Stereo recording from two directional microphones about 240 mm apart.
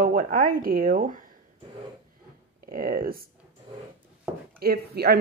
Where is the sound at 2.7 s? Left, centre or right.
Right.